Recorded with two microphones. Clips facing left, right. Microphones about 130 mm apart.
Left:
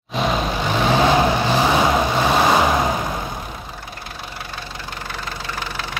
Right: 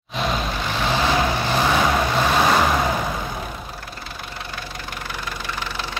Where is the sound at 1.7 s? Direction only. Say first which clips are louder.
Left 2 dB; 15° left (ahead or behind).